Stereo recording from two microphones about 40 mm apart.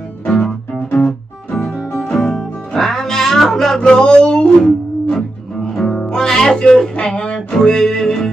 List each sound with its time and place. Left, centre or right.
0.2 s music: centre
1.5 s music: centre
3.8 s a sound: left
4.6 s music: centre
6.6 s a sound: centre
7.3 s music: centre